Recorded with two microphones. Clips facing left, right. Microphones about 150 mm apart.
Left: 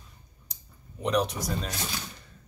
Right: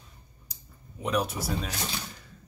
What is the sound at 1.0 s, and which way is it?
Speech, 5° right (ahead or behind).